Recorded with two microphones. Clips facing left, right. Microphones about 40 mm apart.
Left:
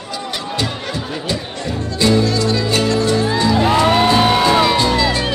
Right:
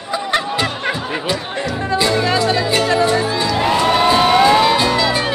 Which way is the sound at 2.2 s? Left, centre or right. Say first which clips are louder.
Right 1 dB; right.